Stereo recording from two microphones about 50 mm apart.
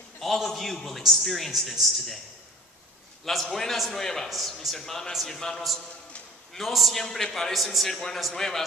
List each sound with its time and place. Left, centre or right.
0.2 s a man's voice: centre
3.3 s a man's voice: centre